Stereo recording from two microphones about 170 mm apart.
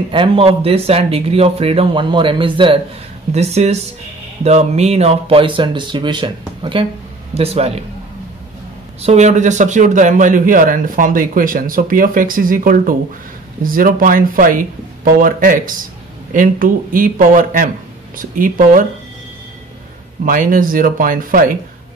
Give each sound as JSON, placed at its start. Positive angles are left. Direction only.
{"t": 0.1, "sound": "speech", "side_deg": -30}
{"t": 9.0, "sound": "a man's voice", "side_deg": -40}
{"t": 20.2, "sound": "speech", "side_deg": -55}